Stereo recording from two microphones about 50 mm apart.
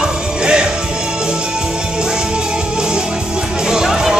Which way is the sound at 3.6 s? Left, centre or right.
Centre.